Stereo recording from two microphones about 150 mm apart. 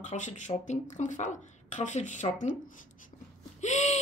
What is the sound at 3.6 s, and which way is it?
Speech, 50° left (ahead or behind).